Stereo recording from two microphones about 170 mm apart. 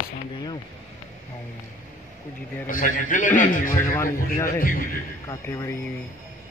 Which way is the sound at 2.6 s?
50° left (ahead or behind).